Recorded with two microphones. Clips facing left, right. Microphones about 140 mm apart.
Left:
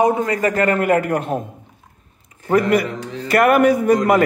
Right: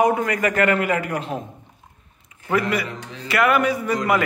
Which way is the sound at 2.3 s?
40° left (ahead or behind).